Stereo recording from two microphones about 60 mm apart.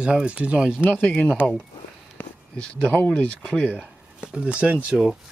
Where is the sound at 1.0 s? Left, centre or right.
Left.